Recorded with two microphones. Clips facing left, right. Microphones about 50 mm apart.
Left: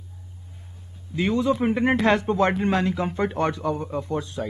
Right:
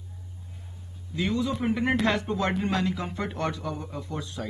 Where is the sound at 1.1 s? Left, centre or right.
Left.